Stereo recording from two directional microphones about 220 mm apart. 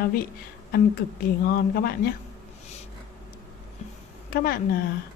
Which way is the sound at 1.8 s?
45° left (ahead or behind).